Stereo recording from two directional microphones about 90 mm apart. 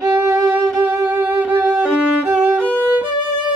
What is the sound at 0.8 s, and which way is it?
Violin, 20° right (ahead or behind).